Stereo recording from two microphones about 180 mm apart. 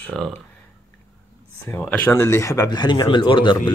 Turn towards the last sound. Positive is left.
turn(degrees=25)  # may be behind; listen again after turning